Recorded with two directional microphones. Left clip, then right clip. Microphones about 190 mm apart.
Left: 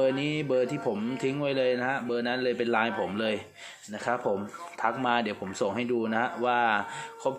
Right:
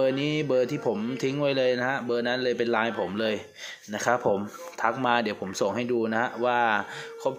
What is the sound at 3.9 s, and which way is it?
Speech, 20° right (ahead or behind).